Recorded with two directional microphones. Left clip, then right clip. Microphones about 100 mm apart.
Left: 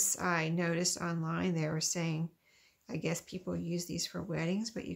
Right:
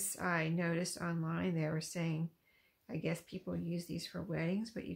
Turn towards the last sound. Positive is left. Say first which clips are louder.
# left 3 dB
turn(degrees=35)  # may be behind; listen again after turning